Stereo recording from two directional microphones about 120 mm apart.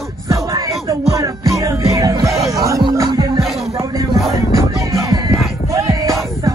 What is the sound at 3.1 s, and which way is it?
Music, 40° right (ahead or behind).